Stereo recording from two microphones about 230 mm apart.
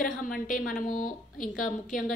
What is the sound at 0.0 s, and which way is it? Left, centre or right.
A woman's voice, left.